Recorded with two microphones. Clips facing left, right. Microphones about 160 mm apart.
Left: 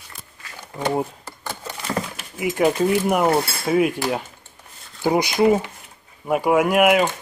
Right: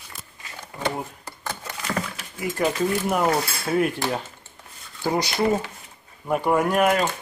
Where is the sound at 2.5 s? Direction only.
10° left (ahead or behind).